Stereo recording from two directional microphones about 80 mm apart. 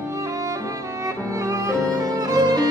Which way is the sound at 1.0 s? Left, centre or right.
Right.